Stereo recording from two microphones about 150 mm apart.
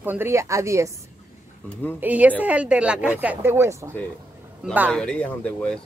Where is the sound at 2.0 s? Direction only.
10° right (ahead or behind).